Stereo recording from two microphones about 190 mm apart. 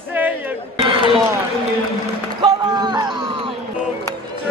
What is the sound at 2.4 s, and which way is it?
Run, 20° right (ahead or behind).